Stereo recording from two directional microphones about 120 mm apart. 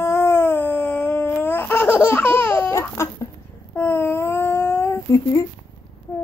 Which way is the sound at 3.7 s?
20° left (ahead or behind).